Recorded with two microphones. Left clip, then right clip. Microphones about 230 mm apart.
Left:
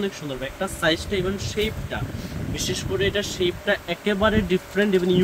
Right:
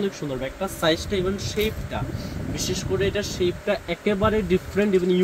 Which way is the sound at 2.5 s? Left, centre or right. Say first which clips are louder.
Even; centre.